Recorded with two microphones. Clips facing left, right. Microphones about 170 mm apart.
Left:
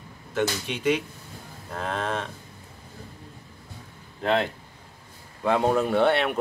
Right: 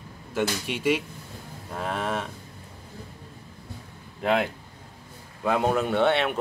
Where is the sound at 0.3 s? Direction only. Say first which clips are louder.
Left 1 dB; 10° right (ahead or behind).